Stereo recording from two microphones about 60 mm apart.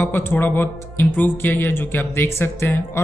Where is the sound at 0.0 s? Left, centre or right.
Left.